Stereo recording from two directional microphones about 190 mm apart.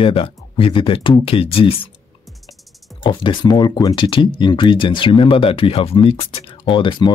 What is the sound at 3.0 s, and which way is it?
Speech, 25° left (ahead or behind).